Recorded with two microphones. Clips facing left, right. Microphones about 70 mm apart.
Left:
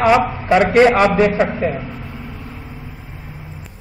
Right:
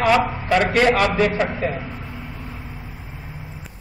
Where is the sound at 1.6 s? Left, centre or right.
Centre.